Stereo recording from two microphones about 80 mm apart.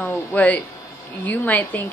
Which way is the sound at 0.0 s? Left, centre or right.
Centre.